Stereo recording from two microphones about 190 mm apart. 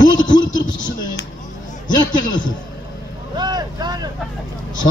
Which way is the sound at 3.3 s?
20° right (ahead or behind).